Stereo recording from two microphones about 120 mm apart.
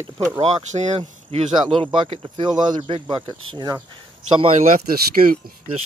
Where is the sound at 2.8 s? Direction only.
50° right (ahead or behind).